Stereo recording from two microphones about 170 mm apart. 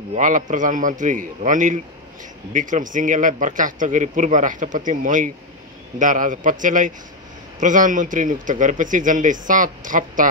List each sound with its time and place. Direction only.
0.1 s a man's voice: 50° right (ahead or behind)